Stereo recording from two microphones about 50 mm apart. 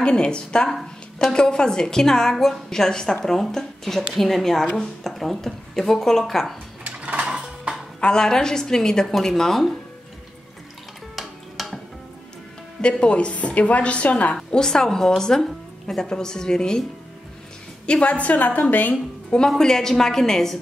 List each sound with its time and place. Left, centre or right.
0.0 s a woman's voice: centre
0.7 s a woman's voice: centre
6.8 s dishes: right
8.0 s a woman's voice: centre
11.1 s music: centre
13.0 s a woman's voice: left
14.3 s a woman's voice: centre
17.8 s a woman's voice: left
19.3 s a woman's voice: centre